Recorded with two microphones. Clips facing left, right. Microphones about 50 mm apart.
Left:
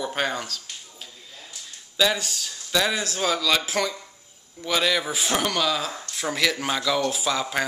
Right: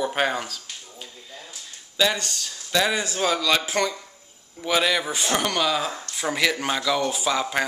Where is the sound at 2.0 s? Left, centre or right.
Centre.